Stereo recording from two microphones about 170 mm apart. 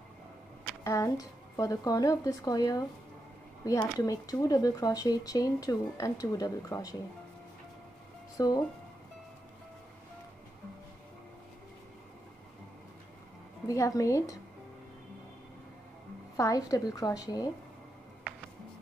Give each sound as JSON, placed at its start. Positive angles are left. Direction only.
{"t": 0.8, "sound": "speech", "side_deg": 20}
{"t": 8.4, "sound": "speech", "side_deg": 25}
{"t": 13.7, "sound": "speech", "side_deg": 20}
{"t": 16.3, "sound": "speech", "side_deg": 20}